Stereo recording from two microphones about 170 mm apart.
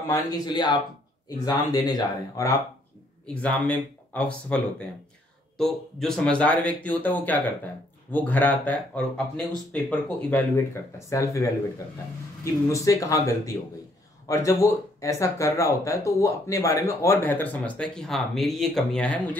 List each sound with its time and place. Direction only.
0.1 s speech: 25° left (ahead or behind)
3.3 s speech: 10° left (ahead or behind)
12.6 s speech: 20° left (ahead or behind)